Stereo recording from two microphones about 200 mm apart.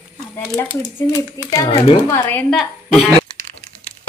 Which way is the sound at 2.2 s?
5° left (ahead or behind).